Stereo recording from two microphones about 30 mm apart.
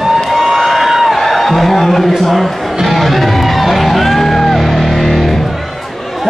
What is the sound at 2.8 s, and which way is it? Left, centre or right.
Music, centre.